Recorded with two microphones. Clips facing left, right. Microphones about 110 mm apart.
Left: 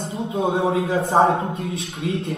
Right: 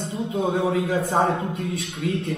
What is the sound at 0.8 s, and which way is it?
A man's voice, 40° left (ahead or behind).